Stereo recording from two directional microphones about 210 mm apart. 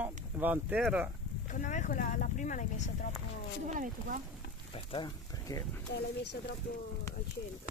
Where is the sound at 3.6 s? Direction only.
40° right (ahead or behind).